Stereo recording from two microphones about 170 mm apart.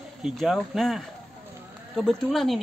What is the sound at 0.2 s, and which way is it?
Speech, centre (ahead or behind).